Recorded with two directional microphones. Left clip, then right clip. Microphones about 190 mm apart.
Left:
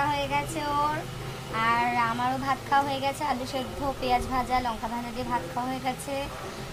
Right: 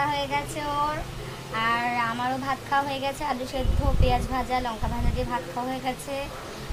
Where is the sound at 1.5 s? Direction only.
Centre (ahead or behind).